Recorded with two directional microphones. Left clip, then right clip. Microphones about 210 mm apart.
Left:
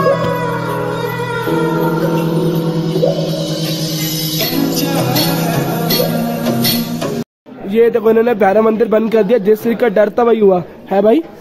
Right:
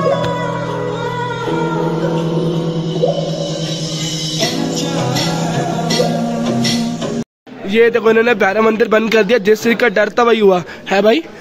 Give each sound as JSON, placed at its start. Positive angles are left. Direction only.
{"t": 5.9, "sound": "music", "side_deg": 20}
{"t": 7.7, "sound": "speech", "side_deg": 10}